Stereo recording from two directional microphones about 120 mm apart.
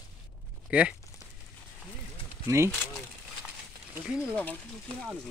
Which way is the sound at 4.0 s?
5° right (ahead or behind).